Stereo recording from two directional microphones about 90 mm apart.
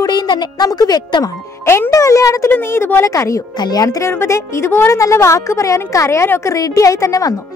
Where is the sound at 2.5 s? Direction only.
25° left (ahead or behind).